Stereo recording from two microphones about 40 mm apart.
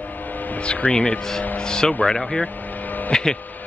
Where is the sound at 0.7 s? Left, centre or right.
Left.